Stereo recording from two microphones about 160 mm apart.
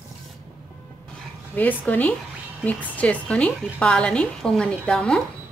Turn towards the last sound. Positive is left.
turn(degrees=5)  # may be behind; listen again after turning